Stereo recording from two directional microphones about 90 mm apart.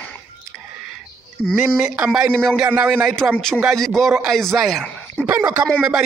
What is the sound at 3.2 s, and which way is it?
Speech, 20° right (ahead or behind).